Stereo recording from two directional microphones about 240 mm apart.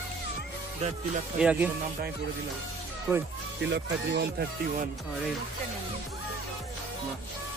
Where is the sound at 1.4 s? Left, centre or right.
Centre.